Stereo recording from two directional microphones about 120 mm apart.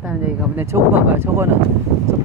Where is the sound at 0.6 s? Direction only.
20° right (ahead or behind).